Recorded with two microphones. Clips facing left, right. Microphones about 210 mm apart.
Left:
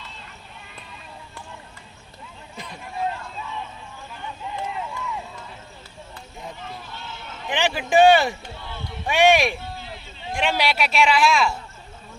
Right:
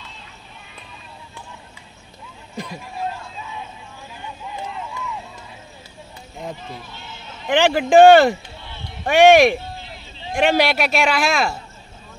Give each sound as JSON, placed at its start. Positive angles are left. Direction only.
{"t": 7.4, "sound": "speech", "side_deg": -50}